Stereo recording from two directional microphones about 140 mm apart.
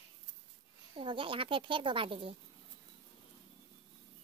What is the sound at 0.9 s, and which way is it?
Speech, 35° right (ahead or behind).